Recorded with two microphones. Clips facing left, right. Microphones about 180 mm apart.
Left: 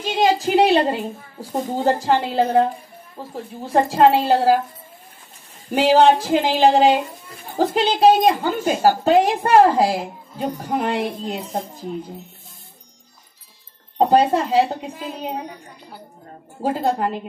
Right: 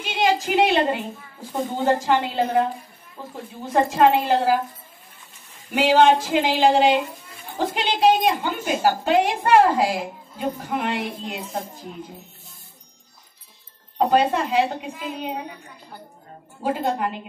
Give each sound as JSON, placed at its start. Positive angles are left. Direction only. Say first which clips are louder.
{"t": 0.0, "sound": "a woman's voice", "louder": "left 3 dB", "side_deg": 35}
{"t": 5.7, "sound": "a woman's voice", "louder": "left 2 dB", "side_deg": 35}
{"t": 13.9, "sound": "a woman's voice", "louder": "left 3 dB", "side_deg": 35}
{"t": 16.6, "sound": "a woman's voice", "louder": "left 3 dB", "side_deg": 35}